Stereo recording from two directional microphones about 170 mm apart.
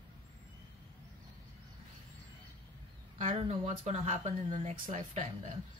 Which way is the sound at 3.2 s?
40° right (ahead or behind).